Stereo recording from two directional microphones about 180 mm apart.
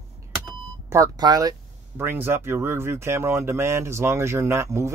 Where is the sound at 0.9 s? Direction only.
20° right (ahead or behind).